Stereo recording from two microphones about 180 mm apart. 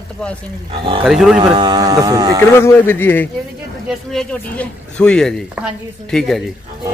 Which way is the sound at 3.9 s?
Centre (ahead or behind).